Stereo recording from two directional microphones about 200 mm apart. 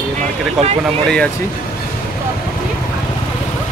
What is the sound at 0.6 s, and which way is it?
Speech, centre (ahead or behind).